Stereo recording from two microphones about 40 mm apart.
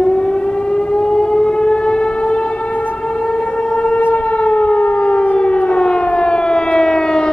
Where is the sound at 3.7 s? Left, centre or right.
Left.